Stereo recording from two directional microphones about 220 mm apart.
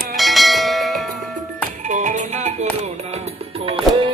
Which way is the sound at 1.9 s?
35° right (ahead or behind).